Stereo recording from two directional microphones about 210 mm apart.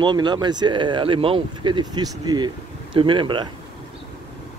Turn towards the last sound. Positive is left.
turn(degrees=-25)  # may be behind; listen again after turning